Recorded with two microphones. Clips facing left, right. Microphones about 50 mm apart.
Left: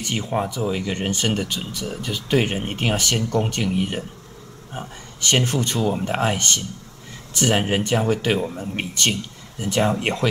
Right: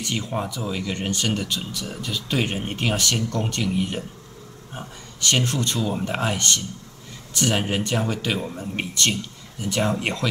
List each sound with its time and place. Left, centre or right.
0.0 s speech: left
2.0 s speech: left
8.4 s speech: centre
9.6 s speech: left